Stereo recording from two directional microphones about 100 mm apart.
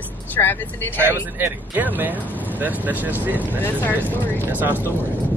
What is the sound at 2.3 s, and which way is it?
Vehicle, 15° left (ahead or behind).